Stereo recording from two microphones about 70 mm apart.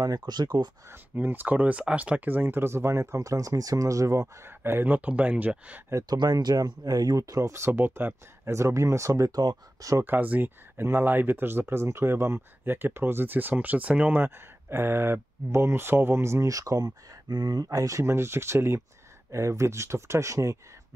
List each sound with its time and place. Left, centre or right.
0.3 s speech: right
0.8 s speech: right
4.5 s speech: right
6.0 s speech: right
9.3 s speech: right
10.0 s speech: right
14.2 s speech: right
16.5 s speech: right
18.0 s speech: right